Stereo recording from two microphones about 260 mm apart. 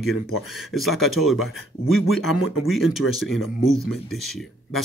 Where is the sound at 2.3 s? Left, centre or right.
Left.